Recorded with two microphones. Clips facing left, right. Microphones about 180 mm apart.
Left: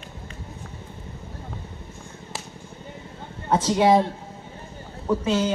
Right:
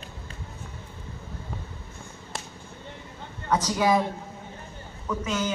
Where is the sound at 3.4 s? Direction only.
25° left (ahead or behind).